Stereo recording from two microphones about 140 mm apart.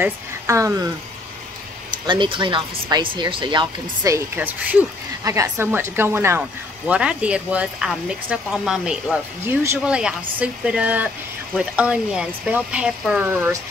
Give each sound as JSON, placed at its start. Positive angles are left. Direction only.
{"t": 0.0, "sound": "speech", "side_deg": -20}
{"t": 2.0, "sound": "speech", "side_deg": -35}
{"t": 4.1, "sound": "speech", "side_deg": -15}
{"t": 5.2, "sound": "speech", "side_deg": -20}